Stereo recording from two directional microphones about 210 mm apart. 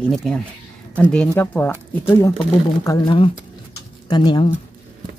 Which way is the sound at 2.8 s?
20° left (ahead or behind).